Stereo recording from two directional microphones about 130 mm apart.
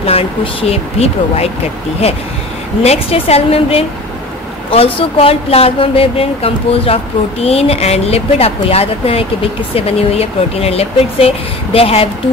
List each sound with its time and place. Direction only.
0.0 s speech: 45° left (ahead or behind)
2.8 s speech: 55° left (ahead or behind)